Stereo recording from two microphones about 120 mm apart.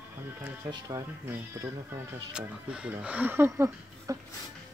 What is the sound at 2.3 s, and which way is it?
Speech, 10° right (ahead or behind).